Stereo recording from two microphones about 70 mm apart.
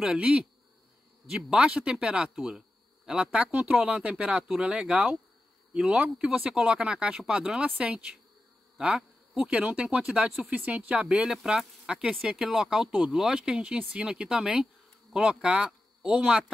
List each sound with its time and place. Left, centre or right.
0.0 s speech: centre